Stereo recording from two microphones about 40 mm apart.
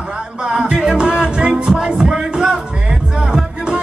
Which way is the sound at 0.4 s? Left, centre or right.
Right.